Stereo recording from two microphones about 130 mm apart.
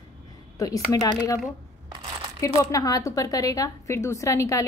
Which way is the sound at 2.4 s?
25° left (ahead or behind).